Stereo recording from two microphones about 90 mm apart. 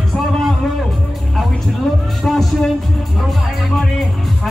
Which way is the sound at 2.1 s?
Centre (ahead or behind).